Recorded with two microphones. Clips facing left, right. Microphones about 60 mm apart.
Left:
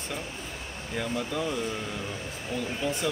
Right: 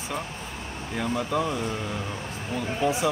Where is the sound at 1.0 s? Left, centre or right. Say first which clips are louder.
Right 4 dB; centre.